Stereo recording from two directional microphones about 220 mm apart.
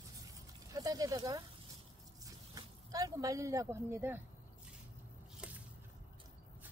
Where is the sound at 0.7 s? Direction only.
15° right (ahead or behind).